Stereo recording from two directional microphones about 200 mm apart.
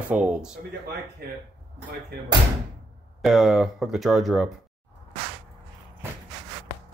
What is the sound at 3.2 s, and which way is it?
Speech, centre (ahead or behind).